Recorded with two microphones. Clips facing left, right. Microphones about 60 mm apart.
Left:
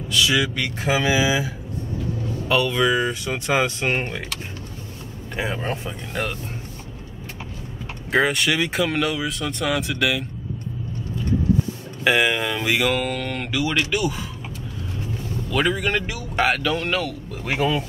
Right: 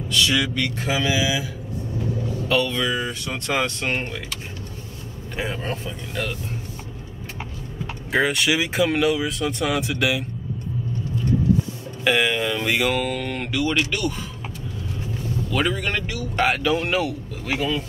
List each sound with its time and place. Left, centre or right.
0.1 s speech: centre
2.4 s speech: centre
5.3 s speech: centre
5.6 s speech: centre
8.1 s speech: centre
12.0 s speech: centre
15.5 s speech: centre
16.4 s speech: centre